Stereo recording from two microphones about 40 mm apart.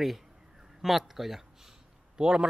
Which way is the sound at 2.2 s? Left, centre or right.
Centre.